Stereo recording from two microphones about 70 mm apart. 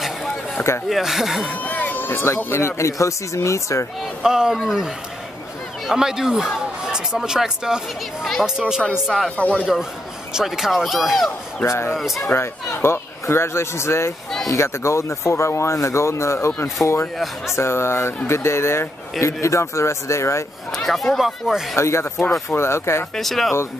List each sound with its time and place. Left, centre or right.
0.8 s speech: centre
1.5 s speech: left
4.2 s speech: centre
9.4 s a man's voice: centre
10.3 s speech: centre
11.6 s speech: left
11.9 s speech: centre
12.3 s speech: left
20.7 s speech: centre
21.7 s speech: left
23.1 s speech: centre